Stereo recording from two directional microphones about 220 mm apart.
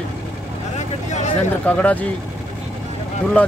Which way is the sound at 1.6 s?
5° left (ahead or behind).